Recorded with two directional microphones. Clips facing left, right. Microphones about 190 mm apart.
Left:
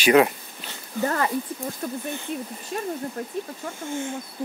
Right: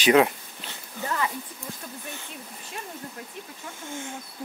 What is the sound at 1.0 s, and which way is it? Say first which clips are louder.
Speech: left 4 dB; 50° left (ahead or behind).